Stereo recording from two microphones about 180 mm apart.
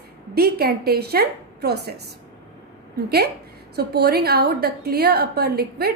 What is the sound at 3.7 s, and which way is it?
A woman's voice, 60° right (ahead or behind).